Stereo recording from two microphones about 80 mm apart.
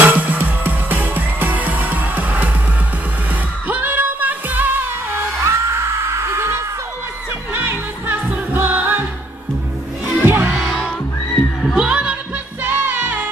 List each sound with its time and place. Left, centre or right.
0.0 s music: right
3.6 s music: right
5.4 s music: right
10.2 s music: right
10.6 s music: centre
11.7 s music: centre
12.6 s music: right